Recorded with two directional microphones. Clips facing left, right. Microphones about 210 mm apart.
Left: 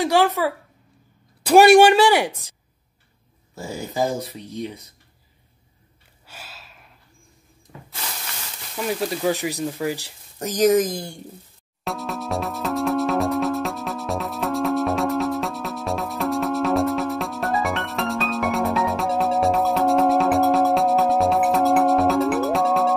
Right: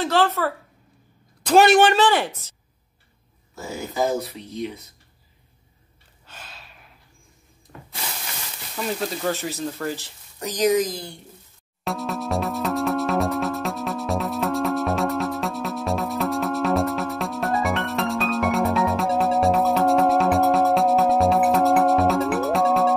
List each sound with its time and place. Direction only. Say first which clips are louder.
0.0 s a woman's voice: left 2 dB; 10° left (ahead or behind)
3.5 s speech: left 1 dB; 30° left (ahead or behind)
6.2 s gasp: left 1 dB; 10° left (ahead or behind)
8.7 s speech: left 2 dB; 10° left (ahead or behind)
10.4 s speech: left 3 dB; 45° left (ahead or behind)
11.8 s music: right 1 dB; centre (ahead or behind)